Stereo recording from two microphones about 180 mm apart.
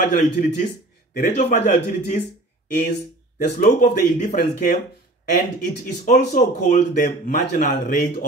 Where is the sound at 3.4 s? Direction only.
50° left (ahead or behind).